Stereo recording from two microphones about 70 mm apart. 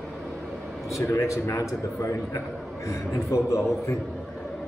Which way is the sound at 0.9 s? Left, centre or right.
Left.